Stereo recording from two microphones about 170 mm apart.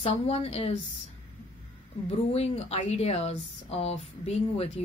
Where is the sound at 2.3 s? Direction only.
40° left (ahead or behind).